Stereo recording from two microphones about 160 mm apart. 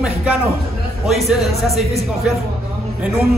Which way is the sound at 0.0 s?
10° right (ahead or behind).